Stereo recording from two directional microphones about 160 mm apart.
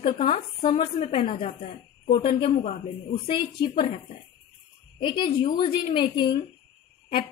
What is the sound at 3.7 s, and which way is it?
Speech, 45° left (ahead or behind).